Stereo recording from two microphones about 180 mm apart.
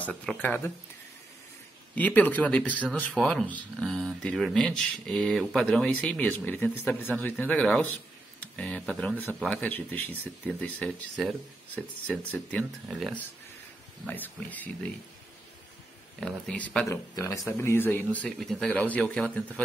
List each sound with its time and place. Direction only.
0.0 s speech: 5° left (ahead or behind)
2.0 s speech: 10° left (ahead or behind)
14.0 s speech: 10° left (ahead or behind)
16.2 s speech: 5° left (ahead or behind)